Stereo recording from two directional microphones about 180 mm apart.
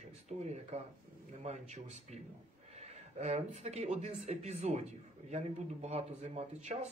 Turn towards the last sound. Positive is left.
turn(degrees=-40)  # may be behind; listen again after turning